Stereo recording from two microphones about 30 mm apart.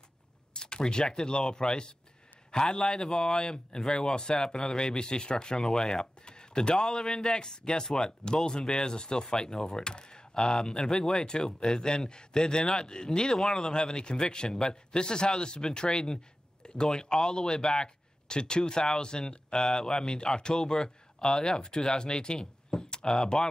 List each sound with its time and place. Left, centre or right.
0.5 s a man's voice: left
5.6 s speech: centre
6.2 s speech: left